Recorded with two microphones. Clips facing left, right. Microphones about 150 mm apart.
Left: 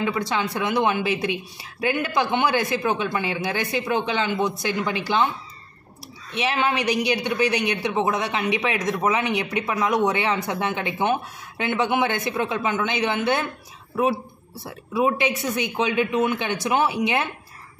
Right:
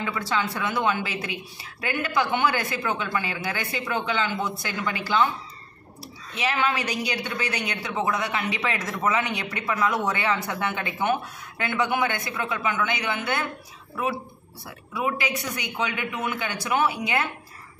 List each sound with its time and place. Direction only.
0.0 s a woman's voice: 20° left (ahead or behind)
6.3 s a woman's voice: 20° left (ahead or behind)
14.6 s a woman's voice: 25° left (ahead or behind)